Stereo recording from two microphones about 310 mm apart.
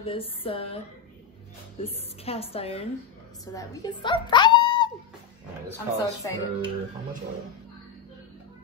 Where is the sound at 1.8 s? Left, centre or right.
Centre.